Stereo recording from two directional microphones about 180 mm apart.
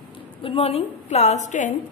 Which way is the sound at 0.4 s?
30° left (ahead or behind).